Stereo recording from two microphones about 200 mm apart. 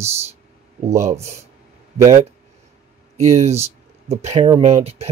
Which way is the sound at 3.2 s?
35° right (ahead or behind).